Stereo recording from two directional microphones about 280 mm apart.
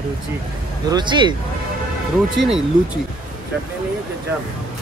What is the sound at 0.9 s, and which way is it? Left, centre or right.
Speech, centre.